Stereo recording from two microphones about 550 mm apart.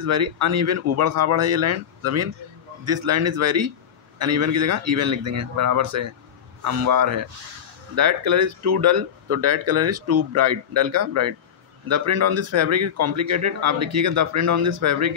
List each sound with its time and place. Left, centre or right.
0.0 s speech: right